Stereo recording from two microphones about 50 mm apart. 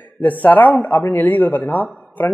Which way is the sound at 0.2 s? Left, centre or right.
Left.